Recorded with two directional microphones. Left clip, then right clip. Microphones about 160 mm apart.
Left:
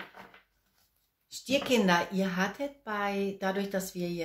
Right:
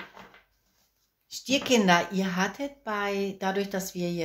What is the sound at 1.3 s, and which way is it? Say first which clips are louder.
Speech: right 3 dB; 45° right (ahead or behind).